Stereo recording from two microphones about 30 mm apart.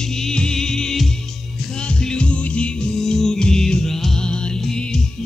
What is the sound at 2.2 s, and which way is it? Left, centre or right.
Music, left.